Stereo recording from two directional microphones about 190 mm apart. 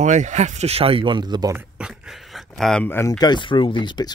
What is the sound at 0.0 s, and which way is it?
Speech, 40° right (ahead or behind).